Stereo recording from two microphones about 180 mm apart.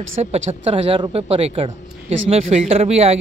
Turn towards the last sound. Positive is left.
turn(degrees=-35)  # may be behind; listen again after turning